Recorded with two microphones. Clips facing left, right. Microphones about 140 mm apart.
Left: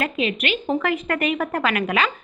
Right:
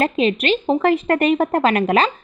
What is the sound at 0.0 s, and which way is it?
Speech, 35° right (ahead or behind).